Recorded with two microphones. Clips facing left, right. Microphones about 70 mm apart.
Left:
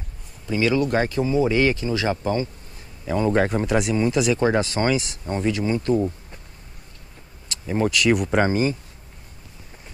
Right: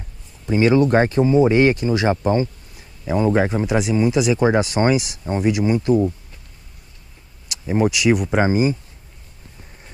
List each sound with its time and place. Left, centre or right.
0.5 s speech: right
3.1 s speech: centre
7.4 s speech: centre